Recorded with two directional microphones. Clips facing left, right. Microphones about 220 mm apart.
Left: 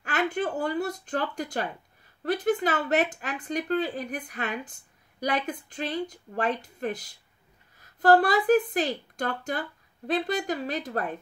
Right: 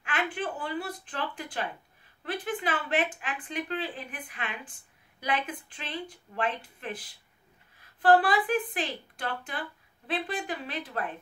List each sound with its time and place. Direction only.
0.0 s speech: 40° left (ahead or behind)